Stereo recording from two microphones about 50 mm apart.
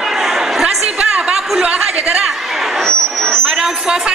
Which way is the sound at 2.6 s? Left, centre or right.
Centre.